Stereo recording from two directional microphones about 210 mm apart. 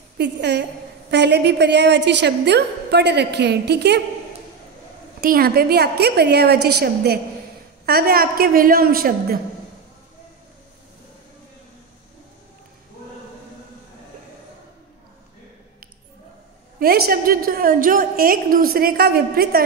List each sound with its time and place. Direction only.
0.2 s a woman's voice: 55° right (ahead or behind)
5.2 s a woman's voice: 45° right (ahead or behind)
16.8 s a woman's voice: 45° right (ahead or behind)